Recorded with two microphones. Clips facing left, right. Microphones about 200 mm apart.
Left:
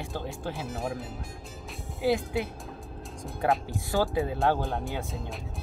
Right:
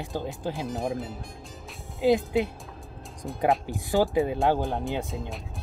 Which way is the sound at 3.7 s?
15° right (ahead or behind).